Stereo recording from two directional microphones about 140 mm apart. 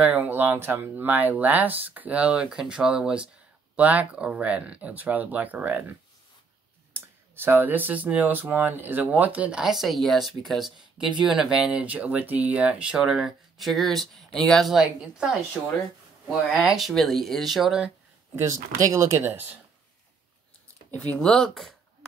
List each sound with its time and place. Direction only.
0.0 s speech: 10° right (ahead or behind)
16.5 s speech: centre (ahead or behind)
18.3 s speech: 20° right (ahead or behind)
20.9 s speech: 10° left (ahead or behind)